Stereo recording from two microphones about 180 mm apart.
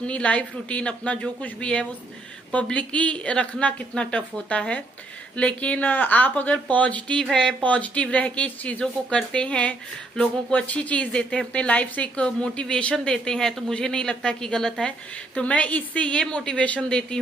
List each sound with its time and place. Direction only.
0.0 s a woman's voice: 5° left (ahead or behind)